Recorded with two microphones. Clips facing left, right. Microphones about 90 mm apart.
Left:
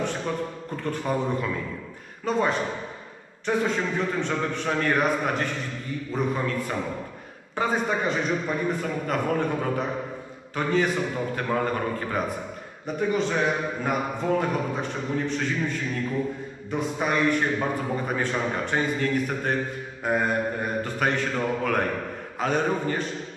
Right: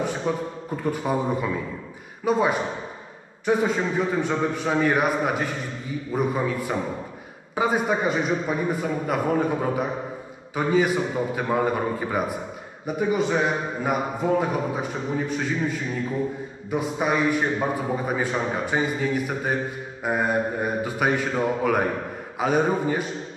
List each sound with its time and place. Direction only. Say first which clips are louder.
0.0 s a man's voice: right 2 dB; 10° right (ahead or behind)